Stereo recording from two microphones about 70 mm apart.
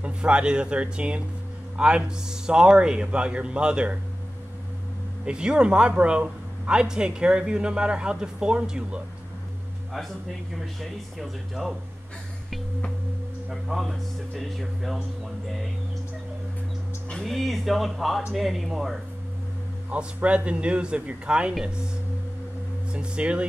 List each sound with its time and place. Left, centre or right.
0.0 s a man's voice: centre
5.2 s a man's voice: centre
9.9 s speech: centre
13.5 s speech: centre
17.1 s speech: centre
19.9 s a man's voice: centre
22.9 s a man's voice: centre